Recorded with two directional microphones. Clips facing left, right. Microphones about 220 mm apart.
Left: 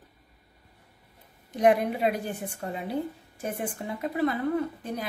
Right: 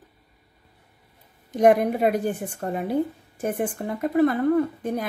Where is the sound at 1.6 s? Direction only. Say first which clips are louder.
Right 5 dB; 50° right (ahead or behind).